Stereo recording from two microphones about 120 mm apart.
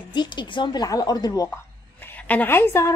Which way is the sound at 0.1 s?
40° left (ahead or behind).